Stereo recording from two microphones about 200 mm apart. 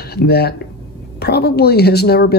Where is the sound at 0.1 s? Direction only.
55° left (ahead or behind).